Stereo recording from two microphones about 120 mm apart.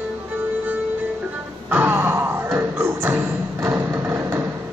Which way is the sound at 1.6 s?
15° right (ahead or behind).